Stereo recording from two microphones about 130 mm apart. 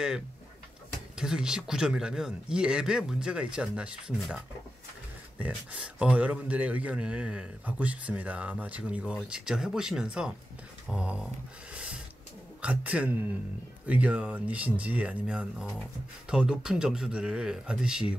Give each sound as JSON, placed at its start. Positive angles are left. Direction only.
{"t": 1.1, "sound": "a man's voice", "side_deg": -5}
{"t": 11.7, "sound": "a sound", "side_deg": -10}
{"t": 12.6, "sound": "a man's voice", "side_deg": -10}